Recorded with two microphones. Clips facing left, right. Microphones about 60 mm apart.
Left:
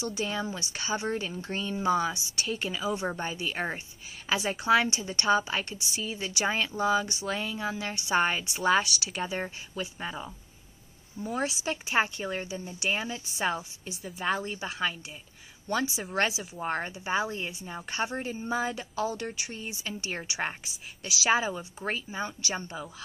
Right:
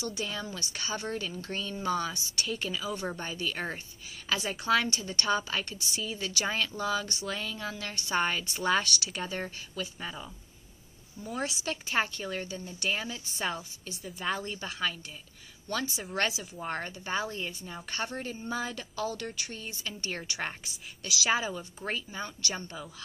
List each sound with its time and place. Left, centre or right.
0.0 s speech: centre
0.4 s speech: centre
2.3 s speech: centre
8.5 s speech: centre
11.2 s speech: centre
11.6 s speech: centre
15.7 s speech: centre
16.5 s speech: centre